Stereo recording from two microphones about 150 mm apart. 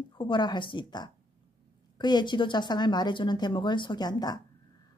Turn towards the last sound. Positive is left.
turn(degrees=25)  # may be behind; listen again after turning